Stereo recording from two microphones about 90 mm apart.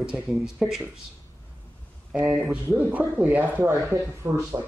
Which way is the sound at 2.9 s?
20° right (ahead or behind).